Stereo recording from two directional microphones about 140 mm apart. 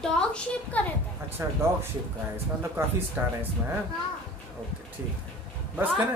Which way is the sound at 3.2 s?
15° right (ahead or behind).